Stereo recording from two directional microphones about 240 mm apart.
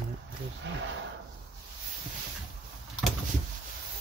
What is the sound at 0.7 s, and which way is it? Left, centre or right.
Speech, right.